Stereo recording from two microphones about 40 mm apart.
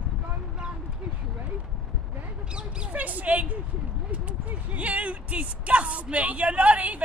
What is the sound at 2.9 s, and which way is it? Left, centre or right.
Speech, right.